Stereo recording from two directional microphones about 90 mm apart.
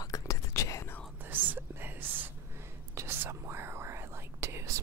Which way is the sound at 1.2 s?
20° right (ahead or behind).